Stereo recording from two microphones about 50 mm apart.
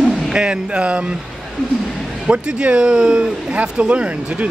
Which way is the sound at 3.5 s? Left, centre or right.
Right.